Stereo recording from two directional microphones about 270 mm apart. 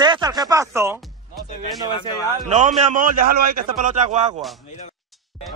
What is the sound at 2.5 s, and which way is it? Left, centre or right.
A man's voice, right.